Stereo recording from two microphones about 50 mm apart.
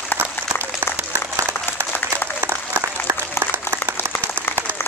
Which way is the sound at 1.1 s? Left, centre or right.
Right.